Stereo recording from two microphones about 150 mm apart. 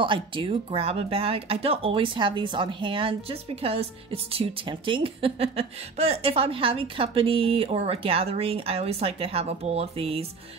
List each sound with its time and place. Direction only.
0.0 s speech: 35° right (ahead or behind)